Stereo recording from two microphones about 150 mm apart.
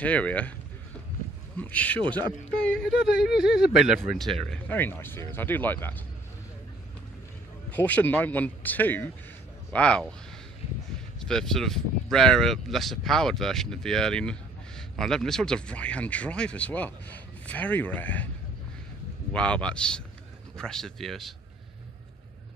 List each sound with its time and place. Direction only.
0.0 s speech: 10° left (ahead or behind)
1.6 s speech: 10° left (ahead or behind)
2.0 s speech: 30° right (ahead or behind)
2.6 s speech: 5° left (ahead or behind)
4.4 s speech: 10° left (ahead or behind)
7.7 s speech: 10° left (ahead or behind)
11.1 s speech: 5° left (ahead or behind)
19.3 s speech: 5° left (ahead or behind)